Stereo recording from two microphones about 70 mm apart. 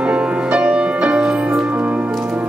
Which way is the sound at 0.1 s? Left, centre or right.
Centre.